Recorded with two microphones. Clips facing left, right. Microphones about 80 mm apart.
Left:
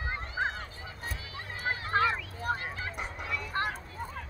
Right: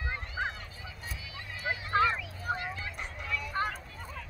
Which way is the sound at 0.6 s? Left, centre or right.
Left.